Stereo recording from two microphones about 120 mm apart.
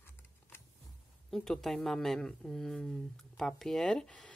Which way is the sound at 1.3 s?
5° left (ahead or behind).